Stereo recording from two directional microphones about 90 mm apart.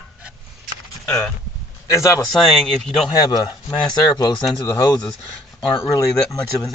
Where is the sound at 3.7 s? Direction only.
55° left (ahead or behind).